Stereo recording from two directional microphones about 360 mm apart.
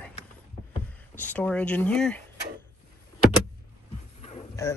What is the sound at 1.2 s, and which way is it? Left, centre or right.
Speech, centre.